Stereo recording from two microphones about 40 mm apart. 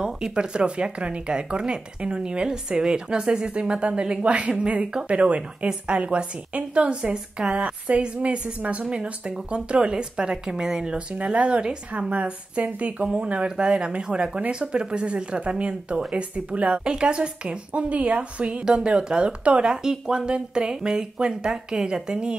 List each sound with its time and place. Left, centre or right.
0.0 s speech: centre
11.1 s speech: right
19.7 s speech: centre